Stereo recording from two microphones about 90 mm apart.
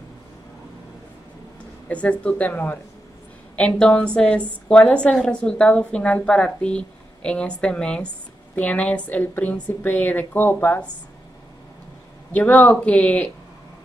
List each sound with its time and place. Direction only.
1.9 s speech: 15° left (ahead or behind)
12.3 s speech: 20° left (ahead or behind)